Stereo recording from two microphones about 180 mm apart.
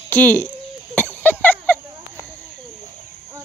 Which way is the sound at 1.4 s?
10° left (ahead or behind).